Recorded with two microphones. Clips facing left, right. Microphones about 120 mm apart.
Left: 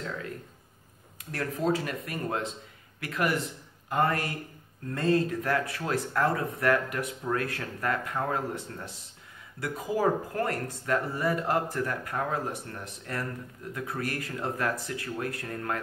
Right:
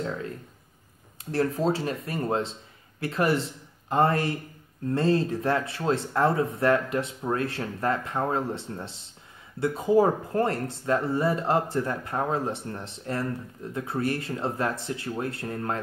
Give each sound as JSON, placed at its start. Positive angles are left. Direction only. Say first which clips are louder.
{"t": 1.3, "sound": "speech", "louder": "right 4 dB", "side_deg": -30}